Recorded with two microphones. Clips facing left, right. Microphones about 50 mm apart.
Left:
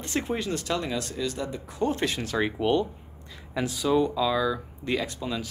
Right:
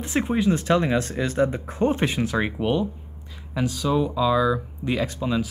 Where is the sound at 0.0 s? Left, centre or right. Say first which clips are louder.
Right 7 dB; centre.